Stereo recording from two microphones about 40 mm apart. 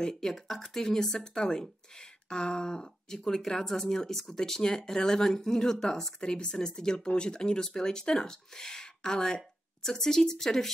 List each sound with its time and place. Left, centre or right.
0.0 s speech: centre